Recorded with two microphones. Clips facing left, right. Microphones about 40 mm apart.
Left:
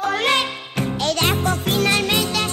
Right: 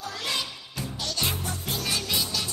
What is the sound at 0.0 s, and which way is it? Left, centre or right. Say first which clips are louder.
Music: left 12 dB; left.